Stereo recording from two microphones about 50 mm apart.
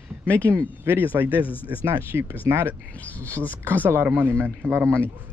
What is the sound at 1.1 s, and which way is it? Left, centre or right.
Speech, right.